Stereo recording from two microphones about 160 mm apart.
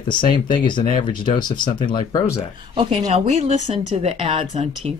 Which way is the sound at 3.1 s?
45° right (ahead or behind).